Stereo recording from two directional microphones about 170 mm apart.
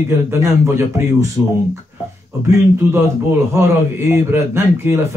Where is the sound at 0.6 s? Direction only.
15° right (ahead or behind).